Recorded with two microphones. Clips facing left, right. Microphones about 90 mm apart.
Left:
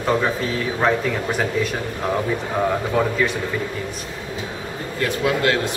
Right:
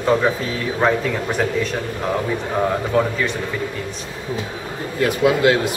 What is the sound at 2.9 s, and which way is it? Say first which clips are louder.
Speech: right 3 dB; 5° left (ahead or behind).